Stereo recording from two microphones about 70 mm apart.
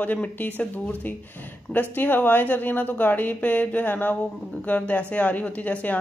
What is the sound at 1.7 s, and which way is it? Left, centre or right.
Speech, left.